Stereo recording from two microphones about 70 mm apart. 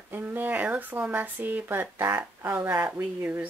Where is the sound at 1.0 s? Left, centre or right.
Right.